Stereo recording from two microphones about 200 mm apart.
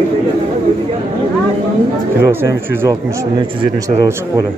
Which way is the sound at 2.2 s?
10° right (ahead or behind).